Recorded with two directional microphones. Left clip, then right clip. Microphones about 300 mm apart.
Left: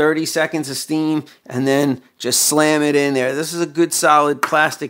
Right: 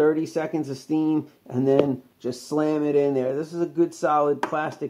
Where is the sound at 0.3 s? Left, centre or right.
Left.